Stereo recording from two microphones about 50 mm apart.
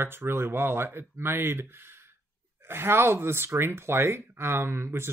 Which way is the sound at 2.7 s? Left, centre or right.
Right.